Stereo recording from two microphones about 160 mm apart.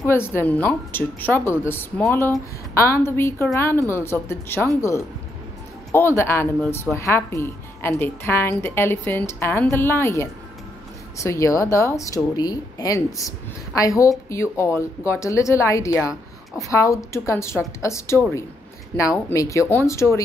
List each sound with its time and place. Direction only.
0.0 s a woman's voice: 15° left (ahead or behind)
5.9 s a woman's voice: 15° left (ahead or behind)